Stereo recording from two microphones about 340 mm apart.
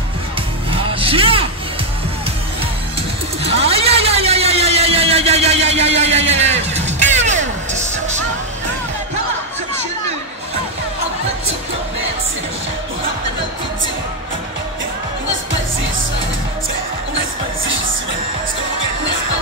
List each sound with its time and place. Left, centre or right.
0.7 s music: centre
3.4 s vehicle: centre
5.9 s music: centre